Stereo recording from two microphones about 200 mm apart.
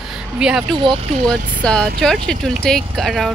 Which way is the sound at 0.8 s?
25° right (ahead or behind).